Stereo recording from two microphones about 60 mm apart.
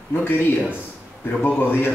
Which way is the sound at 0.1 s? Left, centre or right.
Left.